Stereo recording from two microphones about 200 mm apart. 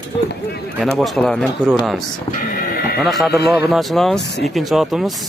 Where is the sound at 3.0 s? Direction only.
Centre (ahead or behind).